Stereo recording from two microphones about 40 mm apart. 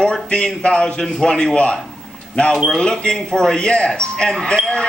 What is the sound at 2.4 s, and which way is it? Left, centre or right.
A woman's voice, left.